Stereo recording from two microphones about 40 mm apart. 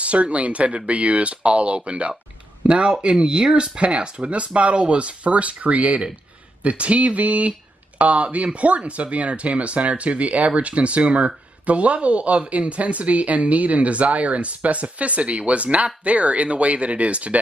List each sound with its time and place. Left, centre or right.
0.0 s speech: right